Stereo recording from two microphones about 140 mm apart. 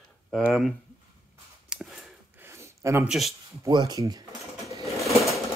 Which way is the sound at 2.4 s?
20° right (ahead or behind).